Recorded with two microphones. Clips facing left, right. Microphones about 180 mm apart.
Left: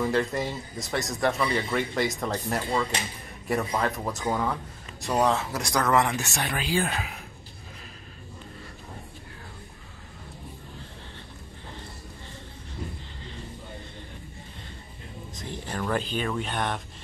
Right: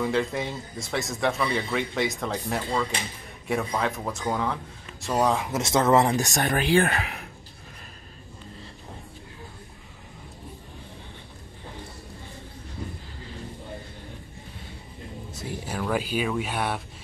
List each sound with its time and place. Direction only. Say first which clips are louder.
0.0 s speech: even; centre (ahead or behind)
5.6 s speech: right 5 dB; 25° right (ahead or behind); by 7.2 s 65° right (ahead or behind)
15.3 s speech: right 1 dB; 10° right (ahead or behind)